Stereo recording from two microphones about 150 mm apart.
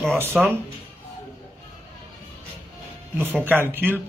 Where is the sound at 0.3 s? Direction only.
Centre (ahead or behind).